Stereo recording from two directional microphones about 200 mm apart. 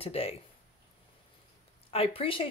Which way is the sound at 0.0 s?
30° left (ahead or behind).